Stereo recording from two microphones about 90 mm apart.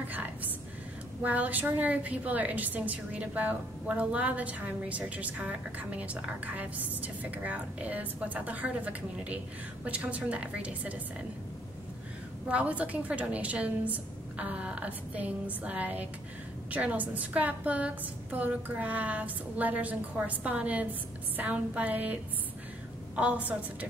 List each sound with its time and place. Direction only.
0.1 s a sound: 20° right (ahead or behind)
1.2 s a woman's voice: 20° right (ahead or behind)
12.4 s a woman's voice: 15° right (ahead or behind)